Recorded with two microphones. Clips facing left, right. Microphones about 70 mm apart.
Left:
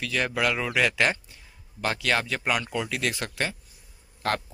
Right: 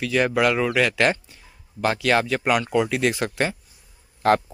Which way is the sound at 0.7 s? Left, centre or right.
Centre.